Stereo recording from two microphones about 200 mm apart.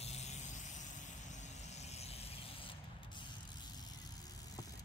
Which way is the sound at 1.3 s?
35° left (ahead or behind).